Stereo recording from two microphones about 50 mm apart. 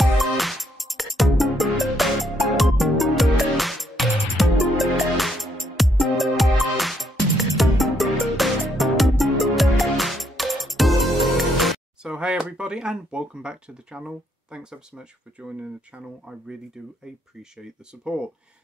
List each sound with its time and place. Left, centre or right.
0.0 s music: centre
12.0 s a sound: centre
12.5 s speech: centre
17.0 s speech: centre